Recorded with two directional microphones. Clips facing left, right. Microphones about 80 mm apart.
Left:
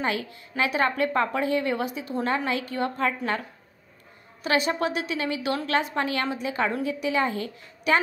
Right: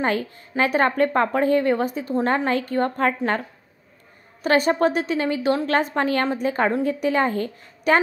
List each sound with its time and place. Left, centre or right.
0.0 s a woman's voice: right